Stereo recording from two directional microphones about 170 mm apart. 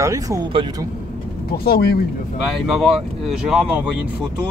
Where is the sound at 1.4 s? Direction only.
65° left (ahead or behind).